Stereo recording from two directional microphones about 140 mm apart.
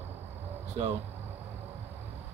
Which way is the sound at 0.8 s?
45° right (ahead or behind).